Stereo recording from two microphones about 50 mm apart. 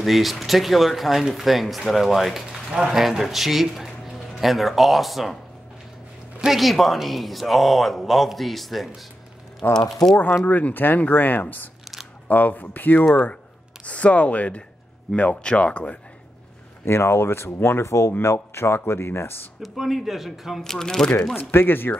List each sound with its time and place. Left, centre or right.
0.0 s a man's voice: centre
6.4 s speech: centre
10.1 s speech: left
10.4 s speech: left
13.8 s speech: left
16.8 s speech: left
18.2 s speech: left
19.6 s speech: centre
20.6 s speech: centre
21.4 s speech: left